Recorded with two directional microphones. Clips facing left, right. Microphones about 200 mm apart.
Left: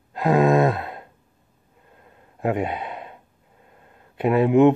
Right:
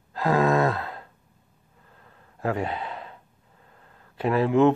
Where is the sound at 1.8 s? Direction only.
20° left (ahead or behind).